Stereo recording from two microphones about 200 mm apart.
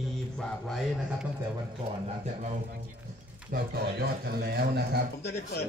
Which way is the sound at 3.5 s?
50° right (ahead or behind).